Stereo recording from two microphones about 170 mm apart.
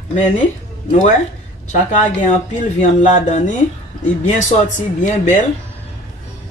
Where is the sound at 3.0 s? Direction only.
45° left (ahead or behind).